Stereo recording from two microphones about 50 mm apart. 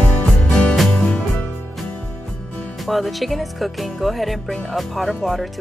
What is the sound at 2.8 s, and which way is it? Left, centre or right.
Speech, centre.